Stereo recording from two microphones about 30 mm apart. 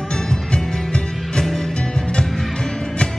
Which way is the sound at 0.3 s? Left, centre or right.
Left.